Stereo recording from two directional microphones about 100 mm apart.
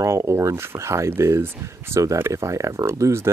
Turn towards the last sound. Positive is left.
turn(degrees=-30)  # may be behind; listen again after turning